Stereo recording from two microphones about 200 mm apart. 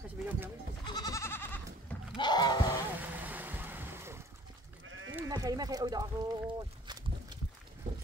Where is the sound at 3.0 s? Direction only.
10° right (ahead or behind).